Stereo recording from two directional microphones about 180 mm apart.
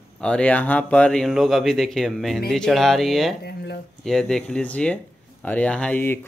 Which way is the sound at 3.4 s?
60° left (ahead or behind).